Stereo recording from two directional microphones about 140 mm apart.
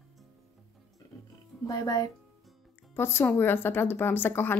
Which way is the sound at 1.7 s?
30° left (ahead or behind).